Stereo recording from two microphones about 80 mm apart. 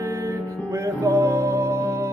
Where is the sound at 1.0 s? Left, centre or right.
Right.